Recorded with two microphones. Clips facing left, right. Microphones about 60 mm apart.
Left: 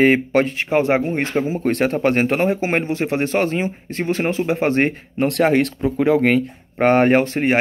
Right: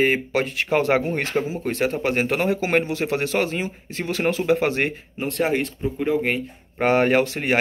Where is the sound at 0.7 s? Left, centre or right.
Left.